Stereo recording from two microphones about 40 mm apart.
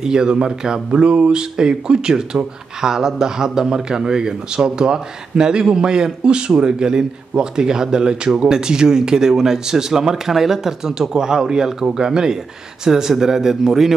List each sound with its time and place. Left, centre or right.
0.0 s a man's voice: centre